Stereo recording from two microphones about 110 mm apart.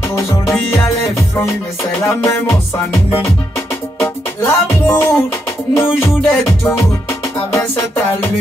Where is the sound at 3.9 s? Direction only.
30° left (ahead or behind).